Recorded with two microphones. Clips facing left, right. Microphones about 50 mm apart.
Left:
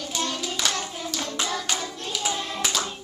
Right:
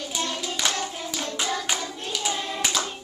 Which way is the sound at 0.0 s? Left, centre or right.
Centre.